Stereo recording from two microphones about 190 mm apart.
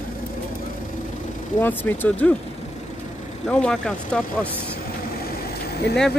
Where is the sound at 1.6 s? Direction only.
10° left (ahead or behind).